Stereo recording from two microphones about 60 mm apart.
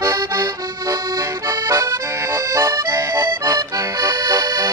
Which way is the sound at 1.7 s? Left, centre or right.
Right.